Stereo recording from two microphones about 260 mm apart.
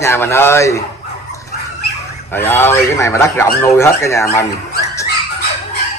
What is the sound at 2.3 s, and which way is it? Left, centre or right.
Speech, centre.